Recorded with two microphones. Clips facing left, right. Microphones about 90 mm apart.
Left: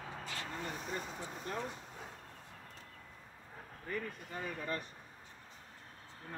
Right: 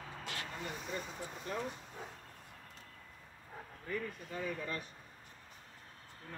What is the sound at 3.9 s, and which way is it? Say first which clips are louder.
Speech: right 1 dB; 35° left (ahead or behind).